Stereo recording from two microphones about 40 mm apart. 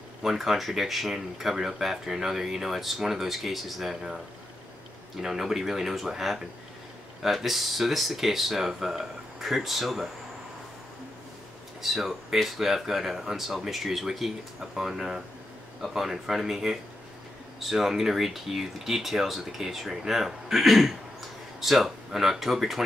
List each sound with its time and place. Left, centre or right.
0.2 s speech: centre
5.2 s speech: centre
11.8 s speech: centre